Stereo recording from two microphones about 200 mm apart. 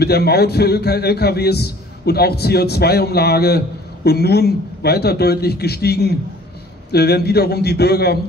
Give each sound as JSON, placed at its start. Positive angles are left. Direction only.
{"t": 0.0, "sound": "a man's voice", "side_deg": 55}